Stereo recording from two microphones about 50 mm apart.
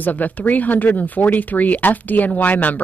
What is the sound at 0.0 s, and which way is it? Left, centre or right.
Speech, left.